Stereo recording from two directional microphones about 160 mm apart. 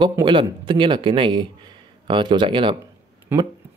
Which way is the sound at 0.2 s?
30° right (ahead or behind).